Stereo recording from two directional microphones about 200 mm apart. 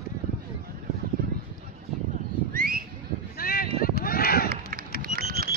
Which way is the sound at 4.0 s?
50° left (ahead or behind).